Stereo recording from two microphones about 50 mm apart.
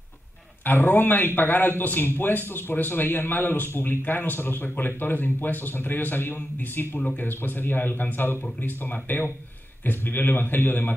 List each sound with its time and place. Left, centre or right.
0.7 s speech: left